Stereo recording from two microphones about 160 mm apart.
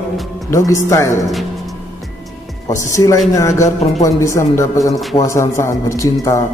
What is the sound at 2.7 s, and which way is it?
A man's voice, 20° left (ahead or behind).